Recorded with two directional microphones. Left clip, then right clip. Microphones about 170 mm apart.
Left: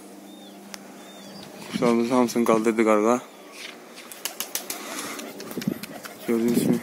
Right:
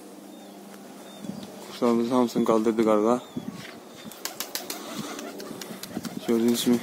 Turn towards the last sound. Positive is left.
turn(degrees=-5)  # may be behind; listen again after turning